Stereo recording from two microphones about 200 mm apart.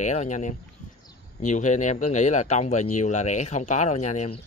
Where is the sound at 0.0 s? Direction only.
35° left (ahead or behind).